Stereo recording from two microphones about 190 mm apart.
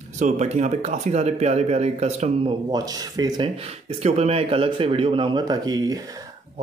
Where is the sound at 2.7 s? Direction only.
20° right (ahead or behind).